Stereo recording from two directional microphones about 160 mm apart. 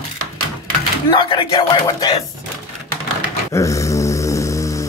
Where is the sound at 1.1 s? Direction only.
30° left (ahead or behind).